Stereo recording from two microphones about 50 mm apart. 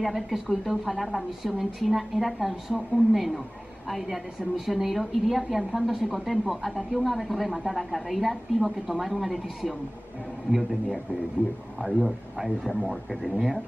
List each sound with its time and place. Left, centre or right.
0.0 s a woman's voice: centre
11.8 s a man's voice: right
12.4 s a woman's voice: centre